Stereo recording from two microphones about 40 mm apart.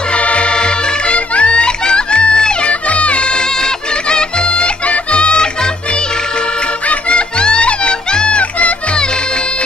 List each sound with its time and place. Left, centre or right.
0.1 s music: left
6.9 s music: left